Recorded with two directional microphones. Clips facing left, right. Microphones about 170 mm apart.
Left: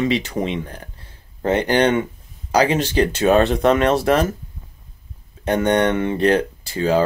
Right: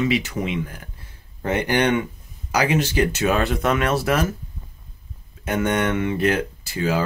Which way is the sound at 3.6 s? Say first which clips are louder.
Left 5 dB; 35° left (ahead or behind).